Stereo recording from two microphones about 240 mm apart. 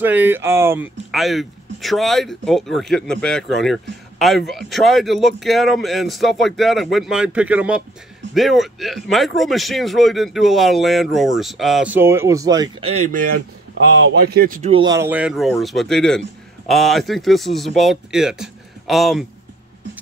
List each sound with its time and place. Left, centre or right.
0.0 s speech: centre
12.9 s speech: right
14.7 s speech: centre